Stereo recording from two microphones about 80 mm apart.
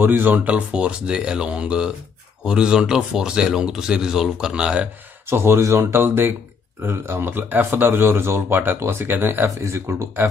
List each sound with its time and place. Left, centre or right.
0.0 s speech: right
5.3 s speech: right